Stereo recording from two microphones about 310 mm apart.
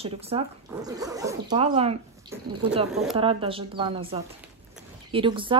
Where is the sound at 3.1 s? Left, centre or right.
Centre.